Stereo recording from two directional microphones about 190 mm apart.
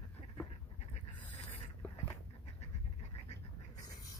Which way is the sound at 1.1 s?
10° left (ahead or behind).